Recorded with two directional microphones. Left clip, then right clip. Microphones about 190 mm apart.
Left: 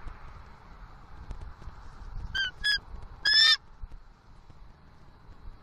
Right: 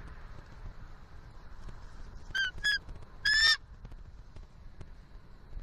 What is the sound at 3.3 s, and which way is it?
Goose, 5° left (ahead or behind).